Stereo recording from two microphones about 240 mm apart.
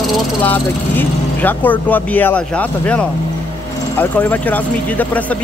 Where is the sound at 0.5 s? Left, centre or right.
Centre.